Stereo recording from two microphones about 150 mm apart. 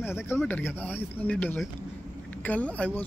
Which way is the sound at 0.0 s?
15° left (ahead or behind).